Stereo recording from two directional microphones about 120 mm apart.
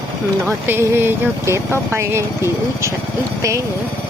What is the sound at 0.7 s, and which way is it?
Speech, 20° right (ahead or behind).